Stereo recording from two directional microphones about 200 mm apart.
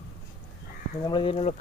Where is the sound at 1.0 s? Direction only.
25° left (ahead or behind).